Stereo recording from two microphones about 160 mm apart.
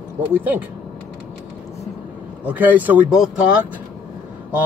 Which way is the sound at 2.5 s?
10° right (ahead or behind).